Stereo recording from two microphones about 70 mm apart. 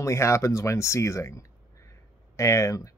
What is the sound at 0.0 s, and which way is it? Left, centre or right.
Speech, left.